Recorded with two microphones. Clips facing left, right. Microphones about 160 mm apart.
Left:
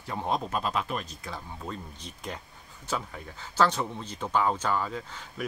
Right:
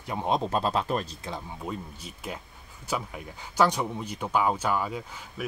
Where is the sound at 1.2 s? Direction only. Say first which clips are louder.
Right 3 dB; 15° right (ahead or behind).